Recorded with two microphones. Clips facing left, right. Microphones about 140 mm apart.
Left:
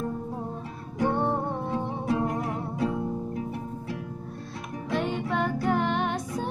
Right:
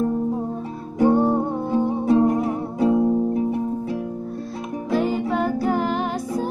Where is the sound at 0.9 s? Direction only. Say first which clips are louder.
Right 8 dB; 30° right (ahead or behind).